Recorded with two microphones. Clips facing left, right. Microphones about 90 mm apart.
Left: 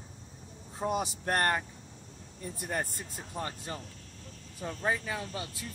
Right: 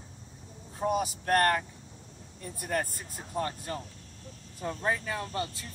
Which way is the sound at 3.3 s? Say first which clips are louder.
Right 5 dB; 15° left (ahead or behind).